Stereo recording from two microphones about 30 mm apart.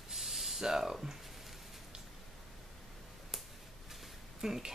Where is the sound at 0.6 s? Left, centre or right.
Centre.